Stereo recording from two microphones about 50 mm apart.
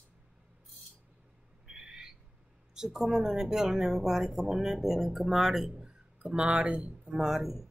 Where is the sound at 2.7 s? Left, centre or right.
Centre.